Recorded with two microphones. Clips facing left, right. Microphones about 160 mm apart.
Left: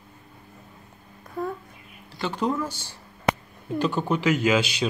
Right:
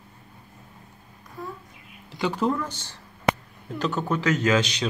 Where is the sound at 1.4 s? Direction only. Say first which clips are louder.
Left 7 dB; 60° left (ahead or behind).